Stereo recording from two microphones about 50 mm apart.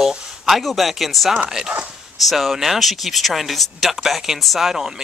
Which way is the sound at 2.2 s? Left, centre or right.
Centre.